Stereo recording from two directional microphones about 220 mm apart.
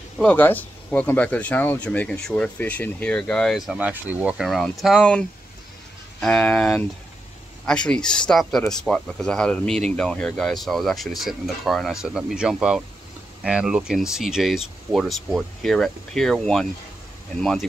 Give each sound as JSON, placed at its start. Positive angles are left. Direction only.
{"t": 0.2, "sound": "speech", "side_deg": 5}
{"t": 6.2, "sound": "speech", "side_deg": 5}